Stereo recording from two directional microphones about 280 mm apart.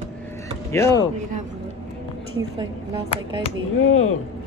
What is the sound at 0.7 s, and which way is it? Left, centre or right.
Speech, centre.